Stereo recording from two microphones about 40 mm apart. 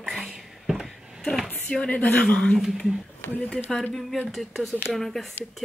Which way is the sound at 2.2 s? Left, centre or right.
Left.